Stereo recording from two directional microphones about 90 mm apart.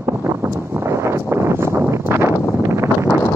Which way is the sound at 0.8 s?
30° right (ahead or behind).